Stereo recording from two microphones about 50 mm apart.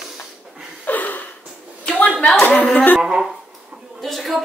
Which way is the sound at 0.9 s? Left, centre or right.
Left.